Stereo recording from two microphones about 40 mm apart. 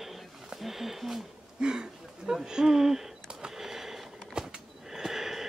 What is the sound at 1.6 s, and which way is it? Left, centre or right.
Speech, centre.